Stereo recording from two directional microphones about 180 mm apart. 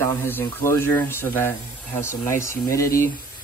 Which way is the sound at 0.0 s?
10° left (ahead or behind).